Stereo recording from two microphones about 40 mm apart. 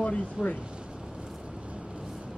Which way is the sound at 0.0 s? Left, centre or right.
Left.